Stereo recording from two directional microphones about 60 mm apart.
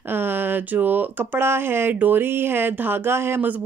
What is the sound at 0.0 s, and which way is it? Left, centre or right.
Speech, right.